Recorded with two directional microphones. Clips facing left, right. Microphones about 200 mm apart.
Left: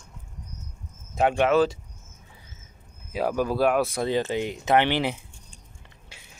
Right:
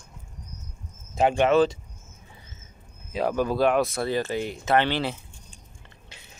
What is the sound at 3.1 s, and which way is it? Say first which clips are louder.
Speech: even; 5° left (ahead or behind).